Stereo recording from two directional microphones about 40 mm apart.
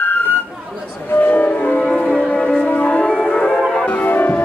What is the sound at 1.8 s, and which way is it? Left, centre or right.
Music, centre.